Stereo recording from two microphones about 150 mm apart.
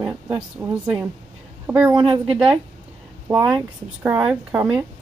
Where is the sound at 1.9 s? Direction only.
35° right (ahead or behind).